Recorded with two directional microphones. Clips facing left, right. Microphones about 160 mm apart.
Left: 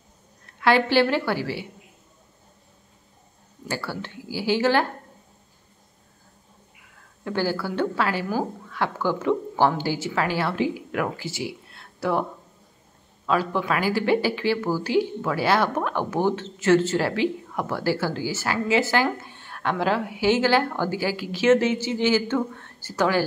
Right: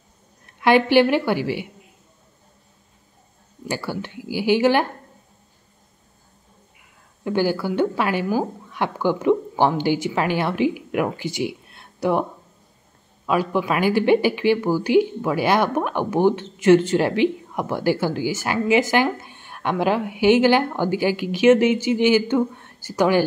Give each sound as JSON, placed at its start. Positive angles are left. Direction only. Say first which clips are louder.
{"t": 0.6, "sound": "speech", "louder": "right 4 dB", "side_deg": -15}
{"t": 3.6, "sound": "speech", "louder": "right 3 dB", "side_deg": -15}
{"t": 7.2, "sound": "speech", "louder": "right 4 dB", "side_deg": -15}